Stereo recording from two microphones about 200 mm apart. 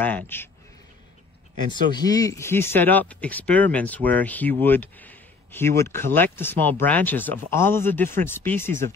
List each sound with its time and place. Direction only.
0.0 s speech: 10° left (ahead or behind)
1.7 s speech: 20° left (ahead or behind)